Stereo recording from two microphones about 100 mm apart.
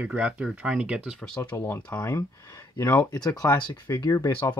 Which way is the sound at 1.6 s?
20° left (ahead or behind).